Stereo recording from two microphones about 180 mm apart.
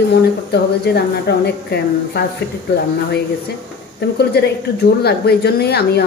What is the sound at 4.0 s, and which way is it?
A woman's voice, 65° left (ahead or behind).